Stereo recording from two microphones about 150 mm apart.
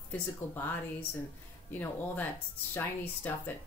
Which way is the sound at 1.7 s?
10° left (ahead or behind).